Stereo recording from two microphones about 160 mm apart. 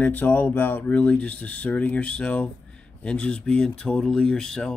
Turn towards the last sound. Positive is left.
turn(degrees=5)  # may be behind; listen again after turning